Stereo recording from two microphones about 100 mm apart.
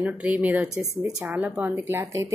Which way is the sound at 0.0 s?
15° right (ahead or behind).